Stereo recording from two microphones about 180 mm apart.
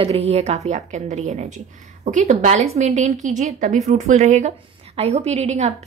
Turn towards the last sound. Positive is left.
turn(degrees=-40)  # may be behind; listen again after turning